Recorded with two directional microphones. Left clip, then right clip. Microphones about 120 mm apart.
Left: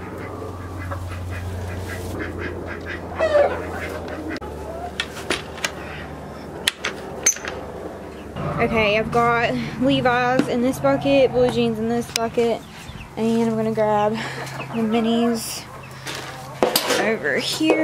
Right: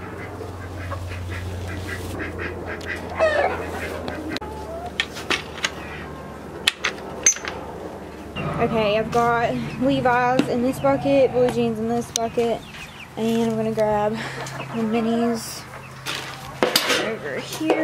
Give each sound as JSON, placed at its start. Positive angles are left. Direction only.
{"t": 3.2, "sound": "chicken", "side_deg": 0}
{"t": 4.9, "sound": "a sound", "side_deg": 5}
{"t": 8.5, "sound": "speech", "side_deg": 10}
{"t": 16.5, "sound": "dishes", "side_deg": 5}
{"t": 17.1, "sound": "dishes", "side_deg": 50}